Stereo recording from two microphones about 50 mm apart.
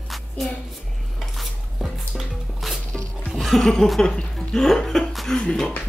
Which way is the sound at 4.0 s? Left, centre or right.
Centre.